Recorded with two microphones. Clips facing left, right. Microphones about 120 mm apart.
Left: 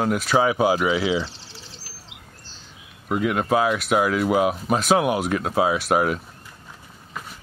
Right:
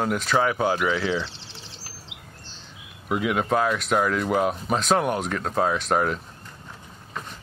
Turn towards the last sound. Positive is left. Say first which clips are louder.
# left 2 dB
turn(degrees=5)  # may be behind; listen again after turning